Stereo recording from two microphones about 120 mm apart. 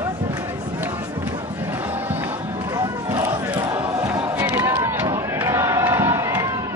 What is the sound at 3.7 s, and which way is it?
Crowd, 20° right (ahead or behind).